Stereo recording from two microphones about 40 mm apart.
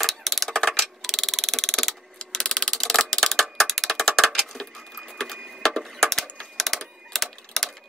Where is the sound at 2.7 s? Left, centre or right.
Centre.